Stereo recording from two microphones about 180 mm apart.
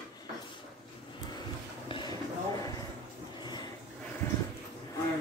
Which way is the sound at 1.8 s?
25° left (ahead or behind).